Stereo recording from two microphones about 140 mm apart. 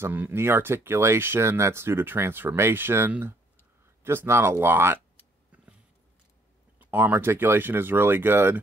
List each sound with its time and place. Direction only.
0.0 s speech: 15° right (ahead or behind)
6.8 s speech: 15° right (ahead or behind)